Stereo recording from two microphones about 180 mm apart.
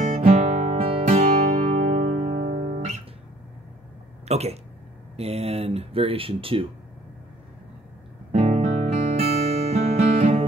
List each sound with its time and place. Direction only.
0.0 s music: 40° right (ahead or behind)
4.3 s speech: 35° right (ahead or behind)
8.3 s music: 40° right (ahead or behind)